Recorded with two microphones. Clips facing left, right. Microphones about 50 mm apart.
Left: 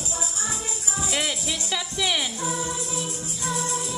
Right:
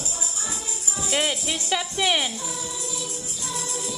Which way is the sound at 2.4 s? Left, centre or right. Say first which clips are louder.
Left 4 dB; left.